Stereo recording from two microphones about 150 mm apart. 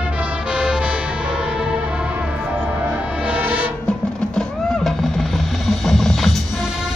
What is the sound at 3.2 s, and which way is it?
Music, 10° right (ahead or behind).